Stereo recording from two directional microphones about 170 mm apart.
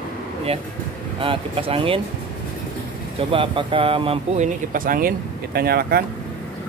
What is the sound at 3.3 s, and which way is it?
Speech, 30° right (ahead or behind).